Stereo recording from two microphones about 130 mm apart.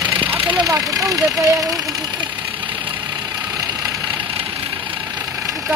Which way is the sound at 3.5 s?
25° right (ahead or behind).